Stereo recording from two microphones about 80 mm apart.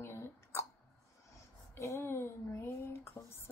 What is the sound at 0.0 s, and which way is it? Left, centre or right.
Hiccup, left.